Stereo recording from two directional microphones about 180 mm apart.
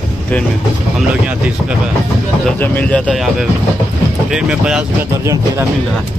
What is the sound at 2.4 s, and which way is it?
Speech, 10° left (ahead or behind).